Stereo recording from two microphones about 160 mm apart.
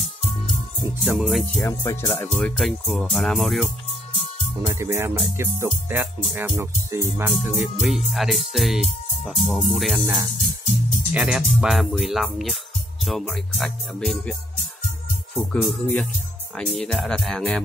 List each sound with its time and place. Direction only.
1.0 s speech: centre (ahead or behind)
1.4 s speech: 15° left (ahead or behind)
2.3 s speech: 5° left (ahead or behind)
4.6 s speech: 20° right (ahead or behind)
7.4 s speech: centre (ahead or behind)
11.1 s speech: 5° right (ahead or behind)
15.3 s speech: 10° left (ahead or behind)